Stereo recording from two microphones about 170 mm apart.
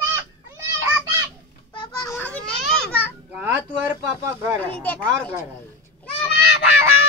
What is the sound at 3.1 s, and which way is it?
Speech, 10° right (ahead or behind).